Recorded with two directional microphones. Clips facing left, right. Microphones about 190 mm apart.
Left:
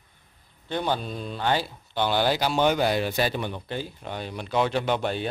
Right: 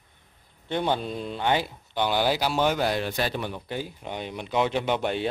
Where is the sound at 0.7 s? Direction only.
20° right (ahead or behind).